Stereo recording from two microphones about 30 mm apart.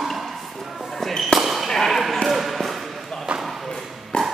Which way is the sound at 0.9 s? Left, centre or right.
Centre.